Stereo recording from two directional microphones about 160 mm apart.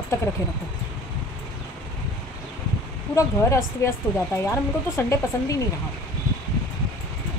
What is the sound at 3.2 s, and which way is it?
Speech, 20° left (ahead or behind).